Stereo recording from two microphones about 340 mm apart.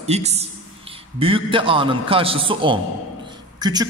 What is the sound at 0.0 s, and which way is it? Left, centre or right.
A man's voice, centre.